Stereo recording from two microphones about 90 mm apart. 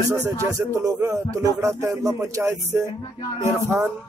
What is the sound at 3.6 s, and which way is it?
Speech, 20° right (ahead or behind).